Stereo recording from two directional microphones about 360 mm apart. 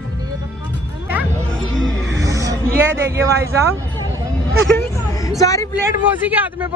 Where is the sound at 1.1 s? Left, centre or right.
Centre.